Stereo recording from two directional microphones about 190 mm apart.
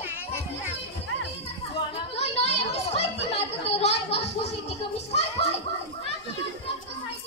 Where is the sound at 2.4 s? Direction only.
35° left (ahead or behind).